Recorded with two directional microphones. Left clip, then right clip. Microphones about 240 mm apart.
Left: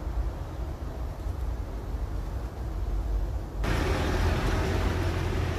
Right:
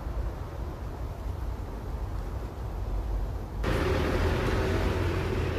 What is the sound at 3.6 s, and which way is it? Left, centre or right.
Vehicle, left.